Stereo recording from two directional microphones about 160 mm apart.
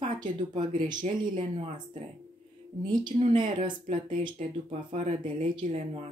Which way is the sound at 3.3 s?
30° right (ahead or behind).